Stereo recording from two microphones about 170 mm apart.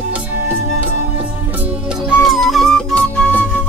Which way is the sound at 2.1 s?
Centre (ahead or behind).